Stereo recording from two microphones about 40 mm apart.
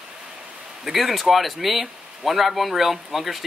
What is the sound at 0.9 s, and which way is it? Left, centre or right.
Speech, centre.